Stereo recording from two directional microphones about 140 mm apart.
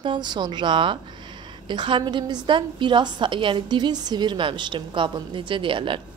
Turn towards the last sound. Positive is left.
turn(degrees=-35)  # may be behind; listen again after turning